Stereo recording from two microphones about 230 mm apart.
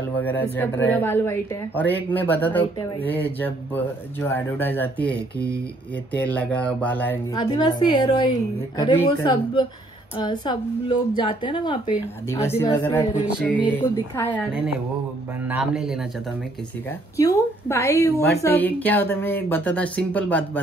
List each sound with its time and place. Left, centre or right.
0.2 s speech: centre
6.3 s speech: centre
7.3 s a woman's voice: centre
13.4 s a man's voice: centre
15.4 s a man's voice: centre
17.2 s speech: centre